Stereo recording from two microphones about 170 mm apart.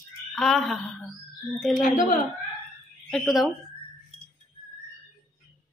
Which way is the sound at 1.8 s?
50° left (ahead or behind).